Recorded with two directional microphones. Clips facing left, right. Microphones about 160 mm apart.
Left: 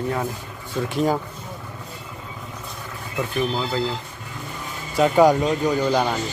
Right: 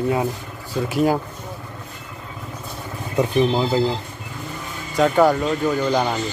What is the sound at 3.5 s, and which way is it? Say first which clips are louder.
Speech: right 5 dB; 25° right (ahead or behind).